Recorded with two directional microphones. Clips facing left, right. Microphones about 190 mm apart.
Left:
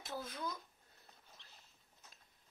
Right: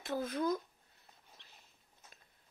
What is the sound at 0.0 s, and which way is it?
Speech, 60° right (ahead or behind).